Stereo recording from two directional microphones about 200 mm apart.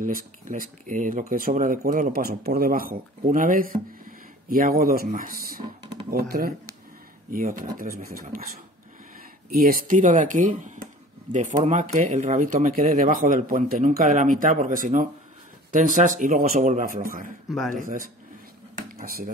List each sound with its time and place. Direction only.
0.0 s speech: 45° right (ahead or behind)
9.5 s speech: 45° right (ahead or behind)
17.5 s speech: centre (ahead or behind)
17.8 s speech: 45° right (ahead or behind)
18.8 s a sound: 45° right (ahead or behind)